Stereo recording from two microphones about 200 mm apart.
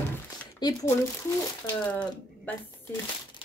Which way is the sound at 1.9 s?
5° left (ahead or behind).